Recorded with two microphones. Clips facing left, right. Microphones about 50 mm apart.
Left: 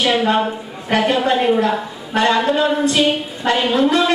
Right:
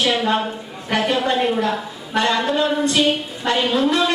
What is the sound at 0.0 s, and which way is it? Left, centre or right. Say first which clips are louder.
A woman's voice: left 3 dB; centre.